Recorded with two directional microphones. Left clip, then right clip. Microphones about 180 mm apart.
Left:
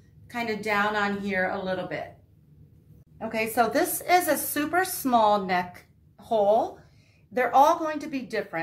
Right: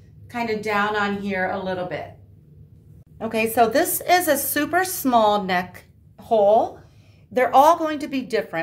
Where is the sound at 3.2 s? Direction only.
45° right (ahead or behind); by 6.6 s 30° right (ahead or behind).